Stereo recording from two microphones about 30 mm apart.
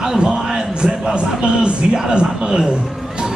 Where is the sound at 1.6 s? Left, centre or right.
Right.